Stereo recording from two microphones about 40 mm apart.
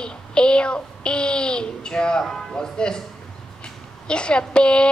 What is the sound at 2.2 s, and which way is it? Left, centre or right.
A woman's voice, centre.